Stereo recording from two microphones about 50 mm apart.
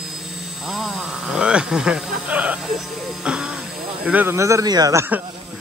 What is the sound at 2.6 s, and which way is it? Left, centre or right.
Music, centre.